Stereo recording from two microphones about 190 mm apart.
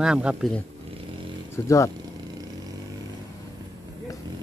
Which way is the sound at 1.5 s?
15° left (ahead or behind).